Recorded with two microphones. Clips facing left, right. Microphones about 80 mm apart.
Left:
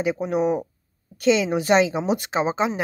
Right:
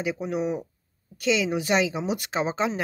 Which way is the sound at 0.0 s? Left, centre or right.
Left.